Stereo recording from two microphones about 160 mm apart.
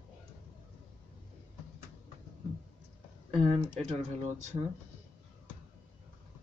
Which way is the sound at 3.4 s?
40° right (ahead or behind).